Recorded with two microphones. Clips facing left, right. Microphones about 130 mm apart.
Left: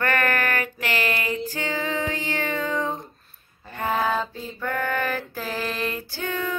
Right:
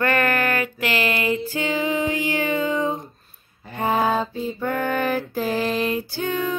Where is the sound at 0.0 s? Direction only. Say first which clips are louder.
Right 3 dB; 20° right (ahead or behind).